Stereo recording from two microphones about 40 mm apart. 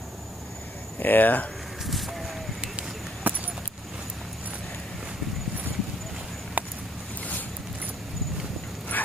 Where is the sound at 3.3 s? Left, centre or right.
Right.